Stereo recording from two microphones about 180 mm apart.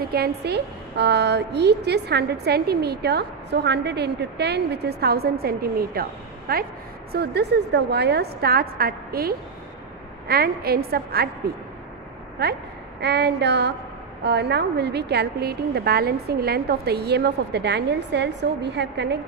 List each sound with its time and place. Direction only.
0.1 s a woman's voice: 60° right (ahead or behind)
12.4 s a woman's voice: 60° right (ahead or behind)